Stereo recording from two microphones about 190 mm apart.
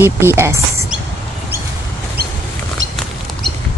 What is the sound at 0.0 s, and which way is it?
Speech, 10° right (ahead or behind).